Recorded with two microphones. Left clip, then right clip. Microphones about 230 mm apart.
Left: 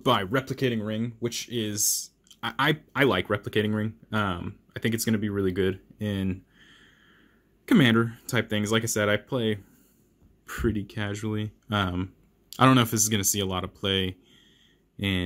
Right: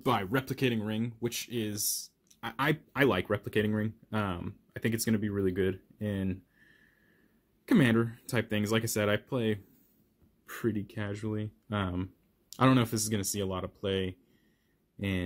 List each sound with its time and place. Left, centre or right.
0.0 s speech: centre